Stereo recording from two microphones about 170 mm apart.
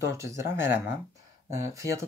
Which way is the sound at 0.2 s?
15° right (ahead or behind).